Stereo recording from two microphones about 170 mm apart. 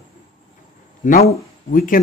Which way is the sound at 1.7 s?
55° left (ahead or behind).